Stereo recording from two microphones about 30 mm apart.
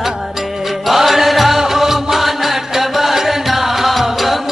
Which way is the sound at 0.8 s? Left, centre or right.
Centre.